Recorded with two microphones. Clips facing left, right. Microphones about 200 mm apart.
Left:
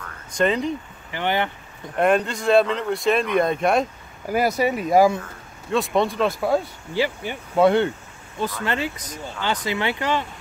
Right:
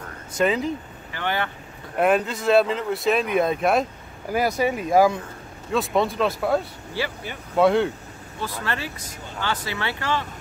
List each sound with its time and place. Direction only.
0.3 s speech: 5° right (ahead or behind)
1.1 s speech: 20° left (ahead or behind)
2.0 s speech: 5° right (ahead or behind)
7.0 s speech: 15° left (ahead or behind)
7.6 s speech: centre (ahead or behind)
8.4 s speech: 20° left (ahead or behind)